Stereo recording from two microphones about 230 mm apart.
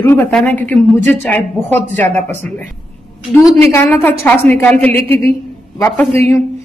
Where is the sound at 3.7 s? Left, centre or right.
Centre.